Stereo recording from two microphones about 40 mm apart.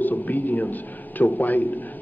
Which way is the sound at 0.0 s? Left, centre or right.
Left.